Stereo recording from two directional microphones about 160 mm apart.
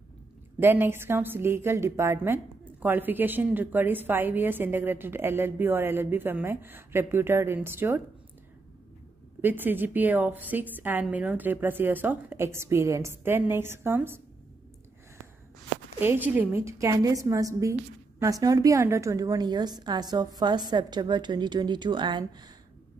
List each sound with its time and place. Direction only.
0.6 s a woman's voice: 15° right (ahead or behind)
9.4 s a woman's voice: 10° right (ahead or behind)
16.0 s a woman's voice: 10° right (ahead or behind); by 22.5 s 30° right (ahead or behind)